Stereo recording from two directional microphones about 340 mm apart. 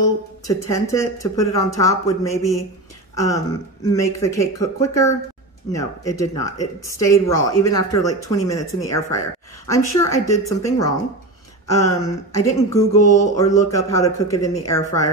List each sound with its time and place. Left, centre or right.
0.5 s speech: centre
13.0 s mantra: left
13.4 s speech: centre